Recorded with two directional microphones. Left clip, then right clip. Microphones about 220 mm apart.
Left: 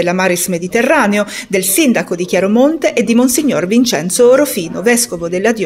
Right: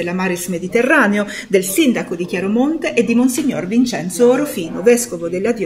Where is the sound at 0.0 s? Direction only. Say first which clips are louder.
Left 7 dB; 50° left (ahead or behind).